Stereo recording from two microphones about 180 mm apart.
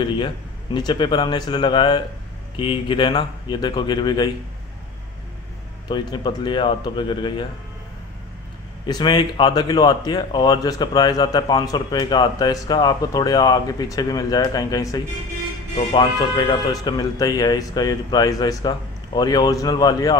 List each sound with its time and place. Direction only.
0.7 s speech: 25° left (ahead or behind)
5.9 s speech: 25° left (ahead or behind)
8.8 s speech: 25° left (ahead or behind)